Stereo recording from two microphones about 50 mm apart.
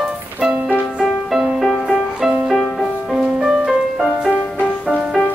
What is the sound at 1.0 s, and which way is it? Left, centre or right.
Music, centre.